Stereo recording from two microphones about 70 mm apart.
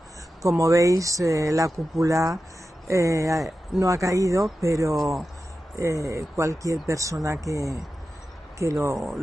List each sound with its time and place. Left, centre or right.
0.4 s speech: right
4.9 s speech: centre
5.8 s speech: right